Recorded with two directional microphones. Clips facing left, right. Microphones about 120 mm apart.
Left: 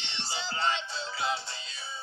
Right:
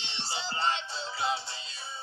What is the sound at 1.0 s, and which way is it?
Music, 25° right (ahead or behind).